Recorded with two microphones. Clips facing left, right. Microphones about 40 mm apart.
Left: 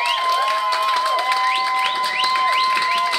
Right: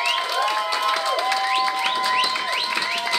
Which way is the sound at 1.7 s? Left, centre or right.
Centre.